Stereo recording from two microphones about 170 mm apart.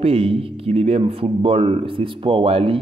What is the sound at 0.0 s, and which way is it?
Speech, 35° right (ahead or behind).